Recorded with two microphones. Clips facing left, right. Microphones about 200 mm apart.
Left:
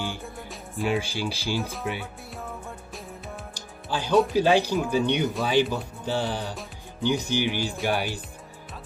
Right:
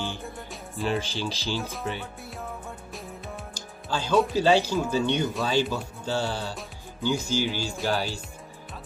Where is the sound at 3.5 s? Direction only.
15° left (ahead or behind).